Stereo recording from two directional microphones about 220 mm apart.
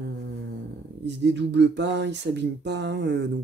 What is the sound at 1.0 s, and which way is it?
Speech, 50° right (ahead or behind).